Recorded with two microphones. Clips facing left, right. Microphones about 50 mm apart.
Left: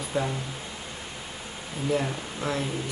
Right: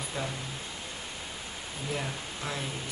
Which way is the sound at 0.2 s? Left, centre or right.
Centre.